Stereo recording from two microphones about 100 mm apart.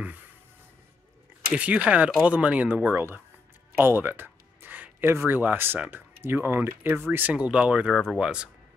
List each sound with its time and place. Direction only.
1.5 s speech: 15° right (ahead or behind)
7.9 s speech: 5° left (ahead or behind)
8.2 s speech: 10° right (ahead or behind)